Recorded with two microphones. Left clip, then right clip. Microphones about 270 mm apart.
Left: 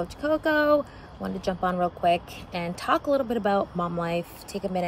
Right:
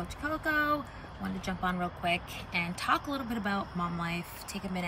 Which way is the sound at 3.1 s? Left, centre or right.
Left.